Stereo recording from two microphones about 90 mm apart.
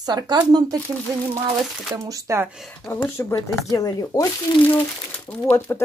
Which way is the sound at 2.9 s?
25° left (ahead or behind).